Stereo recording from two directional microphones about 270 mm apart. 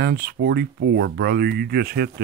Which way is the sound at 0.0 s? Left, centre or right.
Right.